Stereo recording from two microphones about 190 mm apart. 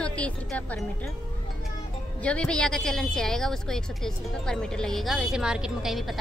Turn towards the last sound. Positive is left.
turn(degrees=0)  # may be behind; listen again after turning